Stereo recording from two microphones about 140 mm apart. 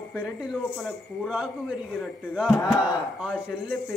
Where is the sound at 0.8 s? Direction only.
10° right (ahead or behind).